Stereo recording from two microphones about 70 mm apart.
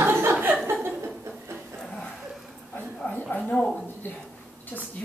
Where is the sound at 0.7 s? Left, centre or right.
Right.